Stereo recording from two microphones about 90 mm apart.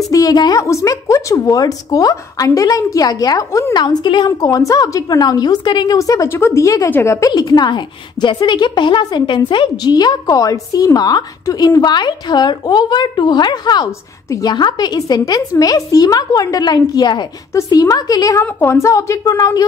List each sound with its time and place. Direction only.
0.1 s a woman's voice: 45° left (ahead or behind)
3.7 s a woman's voice: 55° left (ahead or behind)
4.4 s a woman's voice: 40° left (ahead or behind); by 5.9 s 55° left (ahead or behind)
5.9 s a woman's voice: 35° left (ahead or behind)
6.9 s a woman's voice: 25° left (ahead or behind)
7.2 s a woman's voice: 45° left (ahead or behind); by 9.7 s 65° left (ahead or behind)
9.8 s a woman's voice: 50° left (ahead or behind)
17.6 s a woman's voice: 40° left (ahead or behind)
18.4 s a woman's voice: 30° left (ahead or behind)